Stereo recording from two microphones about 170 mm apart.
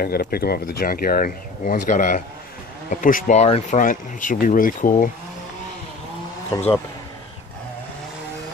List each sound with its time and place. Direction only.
0.0 s speech: 65° left (ahead or behind); by 3.8 s 40° left (ahead or behind)
3.8 s speech: 50° left (ahead or behind)